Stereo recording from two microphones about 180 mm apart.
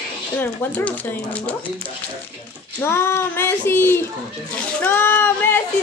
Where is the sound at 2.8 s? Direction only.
15° left (ahead or behind).